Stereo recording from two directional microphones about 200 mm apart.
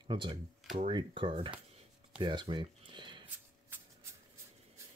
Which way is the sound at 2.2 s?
25° right (ahead or behind).